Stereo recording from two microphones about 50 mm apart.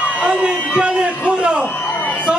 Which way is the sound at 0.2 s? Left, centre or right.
Right.